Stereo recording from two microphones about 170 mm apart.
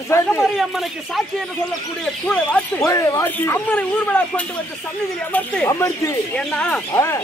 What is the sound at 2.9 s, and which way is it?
A man's voice, 20° left (ahead or behind).